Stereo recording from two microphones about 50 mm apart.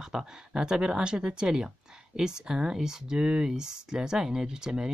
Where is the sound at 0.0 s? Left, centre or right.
Centre.